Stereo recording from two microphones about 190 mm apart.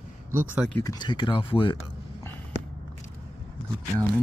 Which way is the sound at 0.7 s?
20° left (ahead or behind).